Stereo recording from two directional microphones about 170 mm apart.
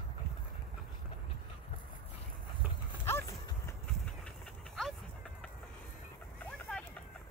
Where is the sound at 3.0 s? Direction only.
15° left (ahead or behind).